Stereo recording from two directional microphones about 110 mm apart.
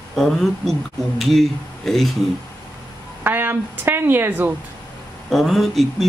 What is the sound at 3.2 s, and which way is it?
A woman's voice, 20° right (ahead or behind).